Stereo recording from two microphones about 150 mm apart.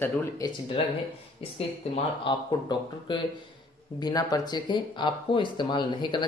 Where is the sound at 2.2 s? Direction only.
30° left (ahead or behind).